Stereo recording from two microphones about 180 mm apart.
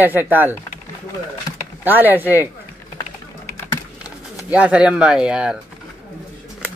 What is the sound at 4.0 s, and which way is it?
Speech, 5° right (ahead or behind).